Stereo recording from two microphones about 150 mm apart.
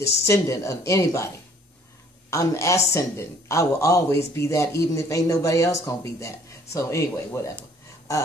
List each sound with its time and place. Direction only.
0.0 s speech: 20° left (ahead or behind)
2.3 s speech: 20° left (ahead or behind)